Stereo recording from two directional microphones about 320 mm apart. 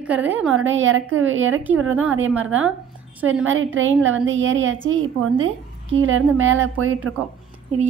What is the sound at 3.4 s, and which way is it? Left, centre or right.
A woman's voice, right.